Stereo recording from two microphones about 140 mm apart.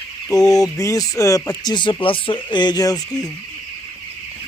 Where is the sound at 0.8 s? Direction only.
25° left (ahead or behind).